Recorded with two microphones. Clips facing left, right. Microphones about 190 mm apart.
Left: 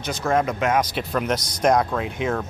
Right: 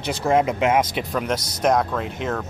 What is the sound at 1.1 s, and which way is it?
Speech, centre (ahead or behind).